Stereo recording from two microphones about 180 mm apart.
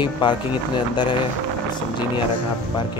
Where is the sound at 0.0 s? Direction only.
25° left (ahead or behind).